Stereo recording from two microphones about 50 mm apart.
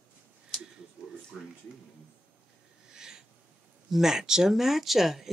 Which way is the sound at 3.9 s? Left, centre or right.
Centre.